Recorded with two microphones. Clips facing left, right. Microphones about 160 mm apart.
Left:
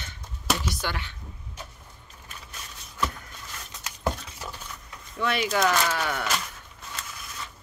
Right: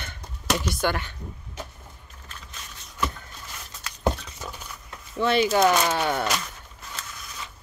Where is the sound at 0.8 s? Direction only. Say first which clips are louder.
Right 7 dB; 50° right (ahead or behind).